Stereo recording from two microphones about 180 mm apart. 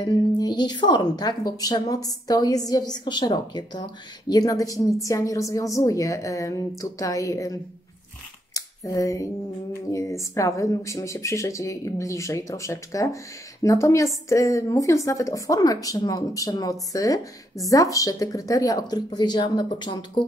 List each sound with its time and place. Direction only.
0.0 s a woman's voice: 25° left (ahead or behind)
8.5 s a woman's voice: 20° left (ahead or behind)